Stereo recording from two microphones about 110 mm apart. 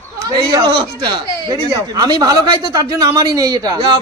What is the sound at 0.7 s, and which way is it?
Speech, 45° right (ahead or behind).